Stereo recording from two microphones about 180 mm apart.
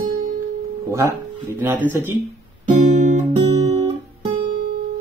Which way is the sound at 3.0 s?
40° right (ahead or behind).